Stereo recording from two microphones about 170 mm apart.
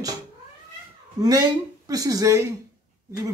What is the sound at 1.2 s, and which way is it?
Speech, 20° right (ahead or behind).